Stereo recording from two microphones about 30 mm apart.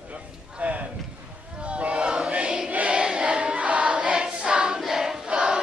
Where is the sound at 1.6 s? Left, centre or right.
Right.